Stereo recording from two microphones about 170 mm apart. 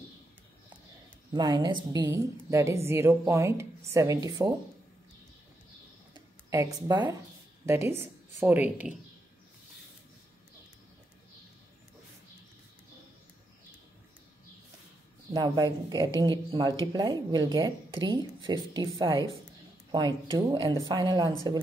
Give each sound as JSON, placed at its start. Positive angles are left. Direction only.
{"t": 1.3, "sound": "a woman's voice", "side_deg": -25}
{"t": 6.5, "sound": "a woman's voice", "side_deg": -20}
{"t": 15.3, "sound": "speech", "side_deg": -25}